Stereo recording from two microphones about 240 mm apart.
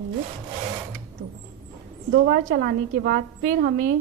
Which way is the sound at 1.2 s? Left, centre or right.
Right.